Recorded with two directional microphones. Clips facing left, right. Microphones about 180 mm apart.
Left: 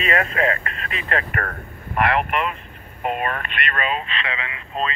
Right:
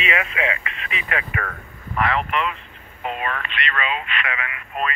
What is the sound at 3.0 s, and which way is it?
Speech, 50° left (ahead or behind).